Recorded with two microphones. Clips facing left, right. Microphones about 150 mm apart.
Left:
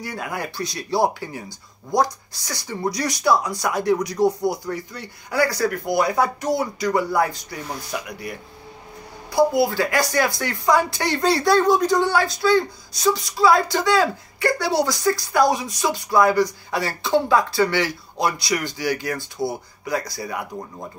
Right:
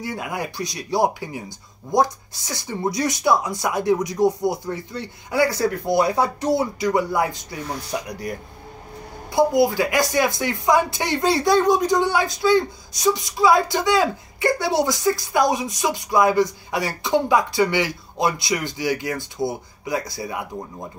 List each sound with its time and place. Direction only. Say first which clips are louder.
0.0 s speech: right 1 dB; 20° right (ahead or behind)
7.9 s speech: right 4 dB; 40° right (ahead or behind)
9.3 s speech: right 1 dB; 20° right (ahead or behind)